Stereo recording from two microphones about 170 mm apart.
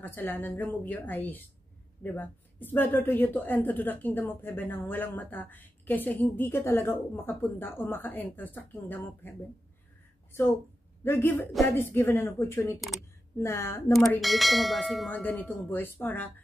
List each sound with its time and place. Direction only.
0.0 s a woman's voice: 10° left (ahead or behind)
11.1 s a woman's voice: 15° left (ahead or behind)
14.2 s bell: centre (ahead or behind)
15.2 s a woman's voice: 10° left (ahead or behind)